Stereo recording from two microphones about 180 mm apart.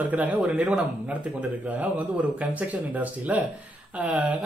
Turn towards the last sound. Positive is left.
turn(degrees=-10)  # may be behind; listen again after turning